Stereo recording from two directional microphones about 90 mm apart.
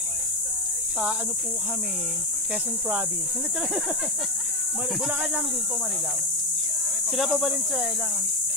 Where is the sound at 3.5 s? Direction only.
5° right (ahead or behind).